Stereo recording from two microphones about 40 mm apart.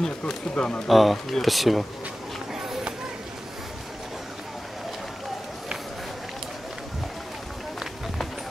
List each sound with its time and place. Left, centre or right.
0.0 s speech: centre
0.8 s speech: centre